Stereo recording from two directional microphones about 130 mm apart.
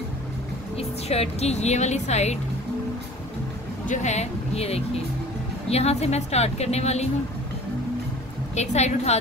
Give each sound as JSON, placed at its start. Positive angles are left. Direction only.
{"t": 0.7, "sound": "speech", "side_deg": 50}
{"t": 3.8, "sound": "a woman's voice", "side_deg": 65}
{"t": 8.5, "sound": "a woman's voice", "side_deg": 60}